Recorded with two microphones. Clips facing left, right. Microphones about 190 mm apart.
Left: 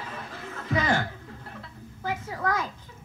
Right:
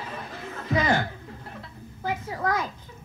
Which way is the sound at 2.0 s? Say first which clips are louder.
Right 2 dB; 25° right (ahead or behind).